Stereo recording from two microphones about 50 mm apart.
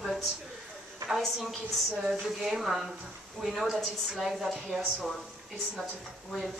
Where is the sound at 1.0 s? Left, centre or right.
Centre.